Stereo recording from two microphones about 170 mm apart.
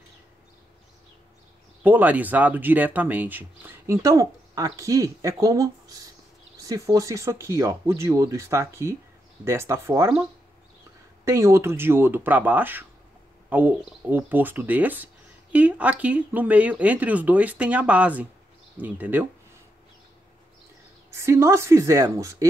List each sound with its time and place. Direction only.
1.8 s speech: 10° right (ahead or behind)
11.2 s speech: 15° right (ahead or behind)
21.1 s speech: 15° right (ahead or behind)